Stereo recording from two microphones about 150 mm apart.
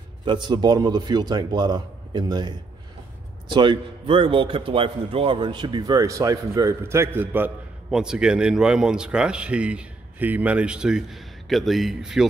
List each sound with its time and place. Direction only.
0.2 s a man's voice: 30° right (ahead or behind); by 12.3 s centre (ahead or behind)